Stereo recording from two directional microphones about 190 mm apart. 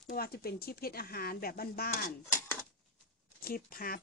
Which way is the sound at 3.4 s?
50° left (ahead or behind).